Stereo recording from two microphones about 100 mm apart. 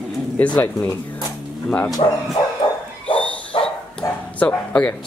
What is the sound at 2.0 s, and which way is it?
Speech, 60° left (ahead or behind).